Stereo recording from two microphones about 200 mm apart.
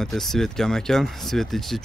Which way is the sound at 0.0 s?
Centre (ahead or behind).